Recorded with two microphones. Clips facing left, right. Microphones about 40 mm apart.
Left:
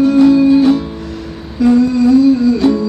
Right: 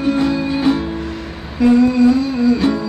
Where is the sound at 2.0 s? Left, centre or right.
Centre.